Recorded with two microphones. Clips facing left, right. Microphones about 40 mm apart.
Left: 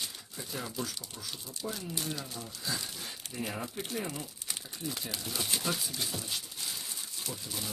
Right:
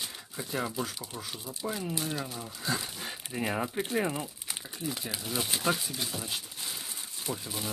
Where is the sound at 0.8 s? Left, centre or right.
Right.